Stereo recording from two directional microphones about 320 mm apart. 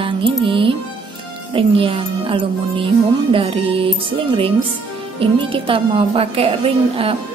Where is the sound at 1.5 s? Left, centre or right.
Centre.